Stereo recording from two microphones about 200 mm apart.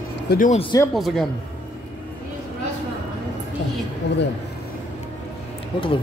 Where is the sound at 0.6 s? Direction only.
25° left (ahead or behind).